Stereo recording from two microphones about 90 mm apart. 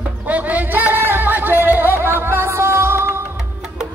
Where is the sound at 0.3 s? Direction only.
15° right (ahead or behind).